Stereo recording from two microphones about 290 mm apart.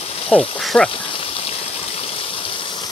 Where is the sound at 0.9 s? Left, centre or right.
Centre.